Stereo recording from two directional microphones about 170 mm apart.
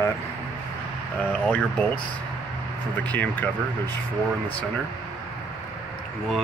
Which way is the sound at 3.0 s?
10° left (ahead or behind).